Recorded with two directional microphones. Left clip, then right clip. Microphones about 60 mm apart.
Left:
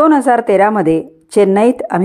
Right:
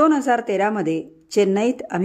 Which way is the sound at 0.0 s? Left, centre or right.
Left.